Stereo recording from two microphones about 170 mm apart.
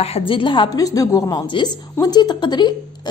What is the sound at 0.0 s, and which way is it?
A woman's voice, 35° left (ahead or behind).